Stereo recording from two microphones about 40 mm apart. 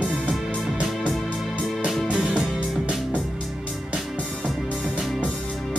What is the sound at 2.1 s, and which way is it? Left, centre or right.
Music, centre.